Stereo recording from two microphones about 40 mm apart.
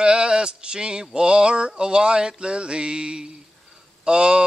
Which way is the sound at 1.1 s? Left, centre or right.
Right.